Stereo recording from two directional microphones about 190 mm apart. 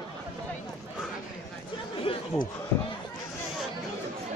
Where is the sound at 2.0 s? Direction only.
30° left (ahead or behind).